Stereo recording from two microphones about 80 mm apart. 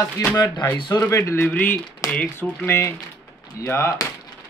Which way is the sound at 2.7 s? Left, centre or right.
Left.